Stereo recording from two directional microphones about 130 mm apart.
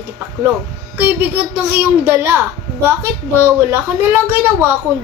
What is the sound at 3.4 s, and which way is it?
Speech, 15° right (ahead or behind).